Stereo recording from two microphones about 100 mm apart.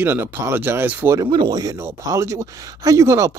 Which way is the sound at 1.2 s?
45° right (ahead or behind).